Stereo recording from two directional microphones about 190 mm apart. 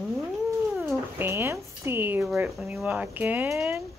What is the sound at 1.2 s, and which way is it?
Speech, 15° right (ahead or behind).